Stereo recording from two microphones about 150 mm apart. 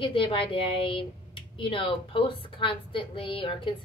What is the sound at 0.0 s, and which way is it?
A woman's voice, 35° left (ahead or behind).